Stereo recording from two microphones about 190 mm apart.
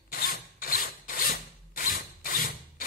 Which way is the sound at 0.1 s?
50° left (ahead or behind).